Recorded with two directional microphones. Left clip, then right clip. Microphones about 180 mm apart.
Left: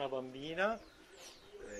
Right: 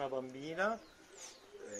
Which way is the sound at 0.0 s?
5° left (ahead or behind).